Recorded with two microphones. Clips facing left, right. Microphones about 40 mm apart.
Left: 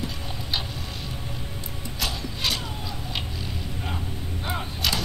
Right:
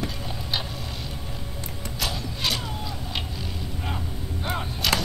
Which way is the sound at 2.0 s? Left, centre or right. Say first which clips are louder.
Even; centre.